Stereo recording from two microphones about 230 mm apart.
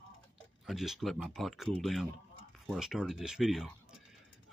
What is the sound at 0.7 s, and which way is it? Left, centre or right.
Speech, centre.